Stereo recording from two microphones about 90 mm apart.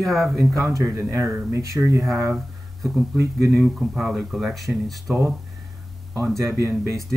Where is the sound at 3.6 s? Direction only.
Centre (ahead or behind).